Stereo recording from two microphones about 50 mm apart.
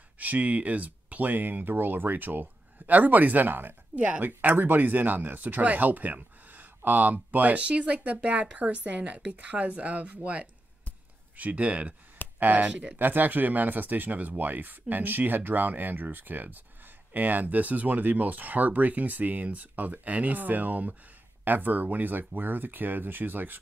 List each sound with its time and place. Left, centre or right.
0.2 s speech: right
3.9 s speech: right
12.6 s speech: right
12.9 s speech: right